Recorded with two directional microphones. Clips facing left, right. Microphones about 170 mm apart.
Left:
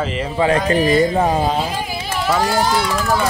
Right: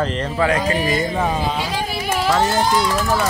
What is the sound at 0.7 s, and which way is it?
Speech, 35° left (ahead or behind).